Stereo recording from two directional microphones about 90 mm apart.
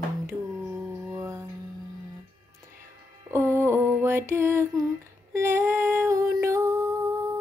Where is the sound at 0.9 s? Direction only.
25° right (ahead or behind).